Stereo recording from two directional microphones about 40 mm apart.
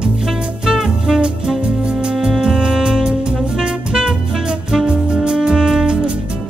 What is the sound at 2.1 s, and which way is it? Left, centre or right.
Music, centre.